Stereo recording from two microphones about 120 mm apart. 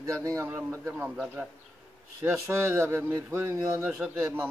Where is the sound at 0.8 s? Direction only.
15° right (ahead or behind).